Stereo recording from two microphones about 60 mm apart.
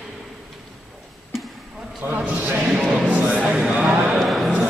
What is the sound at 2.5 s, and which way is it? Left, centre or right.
Music, centre.